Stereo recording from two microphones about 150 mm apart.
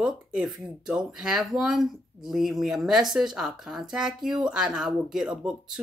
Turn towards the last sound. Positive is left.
turn(degrees=-5)  # may be behind; listen again after turning